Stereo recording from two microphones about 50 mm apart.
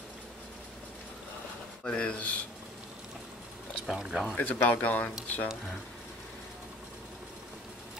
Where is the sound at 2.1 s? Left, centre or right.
Left.